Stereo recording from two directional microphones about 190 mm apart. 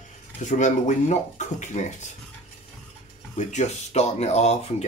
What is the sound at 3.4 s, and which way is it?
Speech, 40° left (ahead or behind).